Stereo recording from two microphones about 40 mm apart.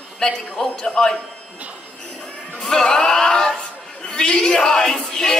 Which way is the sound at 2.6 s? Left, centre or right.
Centre.